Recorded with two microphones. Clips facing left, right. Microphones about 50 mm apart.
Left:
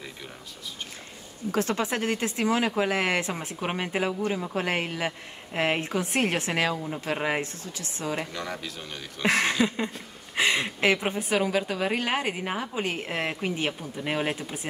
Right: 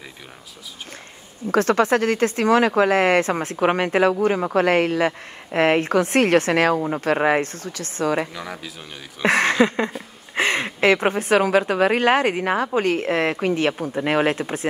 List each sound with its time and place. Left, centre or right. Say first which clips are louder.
1.5 s speech: right 9 dB; right
8.3 s speech: right 1 dB; centre
9.2 s speech: right 6 dB; right